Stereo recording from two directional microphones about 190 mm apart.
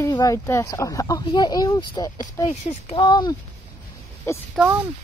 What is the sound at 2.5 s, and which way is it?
Speech, 35° left (ahead or behind).